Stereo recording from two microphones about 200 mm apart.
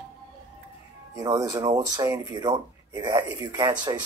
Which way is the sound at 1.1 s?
15° right (ahead or behind).